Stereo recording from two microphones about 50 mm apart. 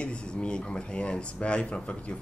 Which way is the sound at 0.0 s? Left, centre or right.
Left.